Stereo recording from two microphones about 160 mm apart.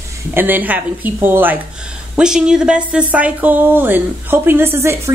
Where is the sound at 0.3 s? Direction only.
10° right (ahead or behind).